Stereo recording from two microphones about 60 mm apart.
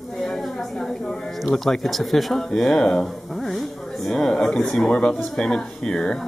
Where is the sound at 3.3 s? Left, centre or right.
Centre.